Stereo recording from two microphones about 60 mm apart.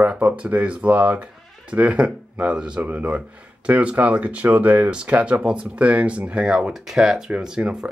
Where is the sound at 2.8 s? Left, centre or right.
Right.